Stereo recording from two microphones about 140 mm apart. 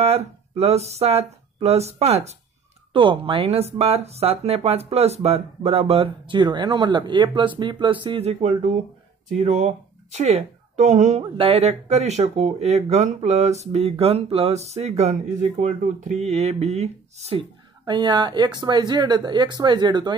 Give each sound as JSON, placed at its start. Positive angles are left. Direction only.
{"t": 0.0, "sound": "speech", "side_deg": -50}
{"t": 2.9, "sound": "speech", "side_deg": -35}
{"t": 15.6, "sound": "speech", "side_deg": -60}
{"t": 17.8, "sound": "speech", "side_deg": -30}